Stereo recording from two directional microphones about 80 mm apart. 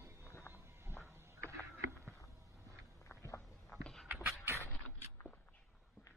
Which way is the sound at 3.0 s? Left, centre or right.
Left.